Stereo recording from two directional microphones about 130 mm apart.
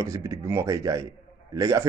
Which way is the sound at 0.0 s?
25° right (ahead or behind).